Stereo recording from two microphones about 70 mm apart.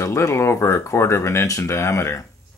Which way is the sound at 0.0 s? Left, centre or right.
Left.